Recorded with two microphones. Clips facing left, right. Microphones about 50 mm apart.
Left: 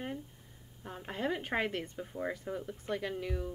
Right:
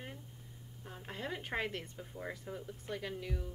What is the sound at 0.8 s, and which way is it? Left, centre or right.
A woman's voice, left.